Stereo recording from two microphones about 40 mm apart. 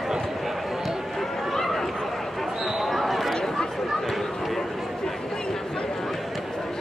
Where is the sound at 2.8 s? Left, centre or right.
Centre.